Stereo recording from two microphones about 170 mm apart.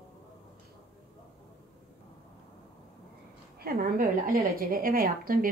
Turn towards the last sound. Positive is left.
turn(degrees=-60)  # may be behind; listen again after turning